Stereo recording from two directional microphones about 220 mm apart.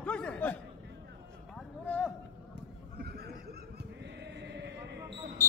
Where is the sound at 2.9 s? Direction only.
45° right (ahead or behind).